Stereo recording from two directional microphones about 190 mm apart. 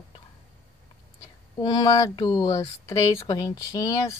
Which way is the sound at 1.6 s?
20° left (ahead or behind).